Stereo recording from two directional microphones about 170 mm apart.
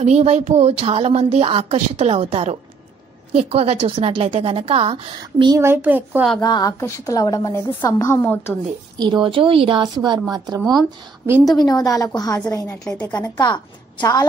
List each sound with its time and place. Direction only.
0.0 s speech: 40° right (ahead or behind)
5.6 s a child's voice: 10° right (ahead or behind)
6.4 s a woman's voice: 20° left (ahead or behind)
8.9 s a woman's voice: 25° right (ahead or behind)
10.6 s speech: centre (ahead or behind)
11.5 s a woman's voice: 25° left (ahead or behind)